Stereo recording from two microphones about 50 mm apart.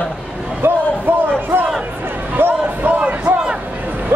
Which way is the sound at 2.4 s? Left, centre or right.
Right.